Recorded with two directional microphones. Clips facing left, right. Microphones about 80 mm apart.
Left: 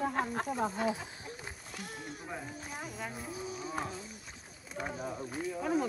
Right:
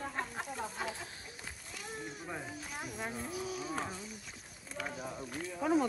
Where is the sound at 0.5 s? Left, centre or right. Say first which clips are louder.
Left 8 dB; centre.